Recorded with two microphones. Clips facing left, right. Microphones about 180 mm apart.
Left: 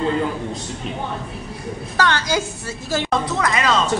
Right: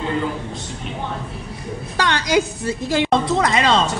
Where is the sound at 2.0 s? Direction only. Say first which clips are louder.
Right 2 dB; 15° right (ahead or behind).